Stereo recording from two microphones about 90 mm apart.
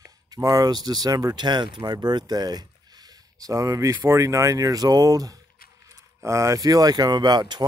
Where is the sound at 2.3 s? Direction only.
50° right (ahead or behind).